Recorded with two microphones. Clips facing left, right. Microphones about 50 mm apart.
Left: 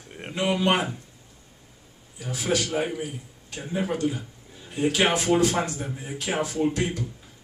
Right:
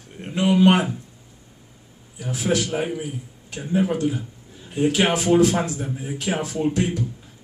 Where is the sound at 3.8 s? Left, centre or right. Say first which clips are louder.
Right 2 dB; centre.